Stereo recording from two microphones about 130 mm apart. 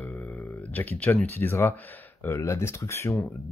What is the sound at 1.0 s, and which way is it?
Speech, 15° left (ahead or behind).